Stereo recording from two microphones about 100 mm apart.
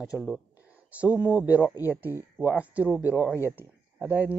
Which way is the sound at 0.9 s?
15° right (ahead or behind).